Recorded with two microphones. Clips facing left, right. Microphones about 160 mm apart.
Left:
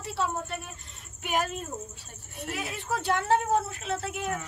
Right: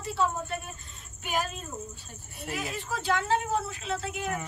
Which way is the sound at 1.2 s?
65° left (ahead or behind).